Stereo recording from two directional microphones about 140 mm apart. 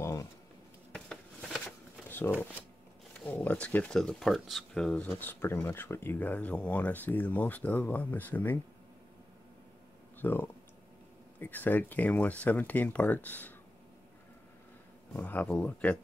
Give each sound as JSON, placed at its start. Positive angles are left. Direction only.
{"t": 0.0, "sound": "a sound", "side_deg": 20}
{"t": 0.9, "sound": "a sound", "side_deg": 5}
{"t": 2.0, "sound": "shuffling cards", "side_deg": 15}
{"t": 3.3, "sound": "speech", "side_deg": 10}
{"t": 10.2, "sound": "speech", "side_deg": 15}
{"t": 15.1, "sound": "speech", "side_deg": 10}